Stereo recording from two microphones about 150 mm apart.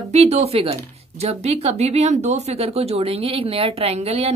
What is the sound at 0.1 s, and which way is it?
Speech, 45° right (ahead or behind).